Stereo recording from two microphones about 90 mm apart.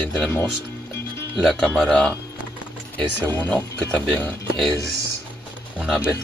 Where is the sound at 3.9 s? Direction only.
15° left (ahead or behind).